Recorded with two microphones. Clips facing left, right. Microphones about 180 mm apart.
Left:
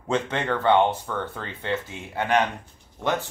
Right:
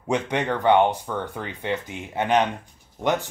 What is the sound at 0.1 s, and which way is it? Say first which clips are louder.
Speech: right 1 dB; 15° right (ahead or behind).